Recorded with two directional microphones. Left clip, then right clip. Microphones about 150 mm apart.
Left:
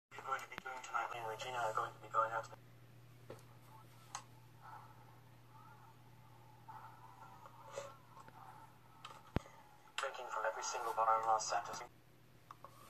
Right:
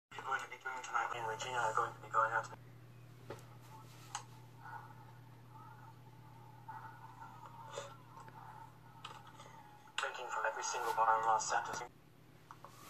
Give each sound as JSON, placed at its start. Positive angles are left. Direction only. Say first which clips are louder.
{"t": 0.1, "sound": "radio", "louder": "right 3 dB", "side_deg": 35}
{"t": 4.1, "sound": "tick-tock", "louder": "right 3 dB", "side_deg": 35}
{"t": 9.0, "sound": "tick", "louder": "left 5 dB", "side_deg": 35}
{"t": 9.9, "sound": "radio", "louder": "right 2 dB", "side_deg": 35}